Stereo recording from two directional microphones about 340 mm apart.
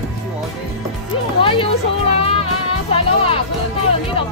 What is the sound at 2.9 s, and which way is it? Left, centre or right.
Speech, centre.